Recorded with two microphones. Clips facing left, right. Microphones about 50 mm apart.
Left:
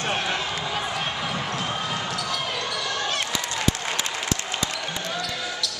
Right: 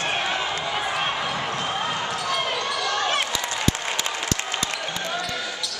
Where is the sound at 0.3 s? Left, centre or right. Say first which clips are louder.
Right 1 dB; centre.